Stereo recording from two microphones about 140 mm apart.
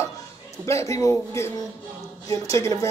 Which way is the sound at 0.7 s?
20° left (ahead or behind).